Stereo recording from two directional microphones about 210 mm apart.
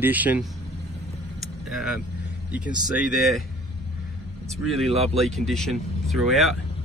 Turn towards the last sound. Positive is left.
turn(degrees=0)  # may be behind; listen again after turning